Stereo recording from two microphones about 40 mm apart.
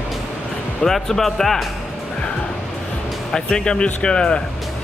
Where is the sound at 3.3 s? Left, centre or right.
Centre.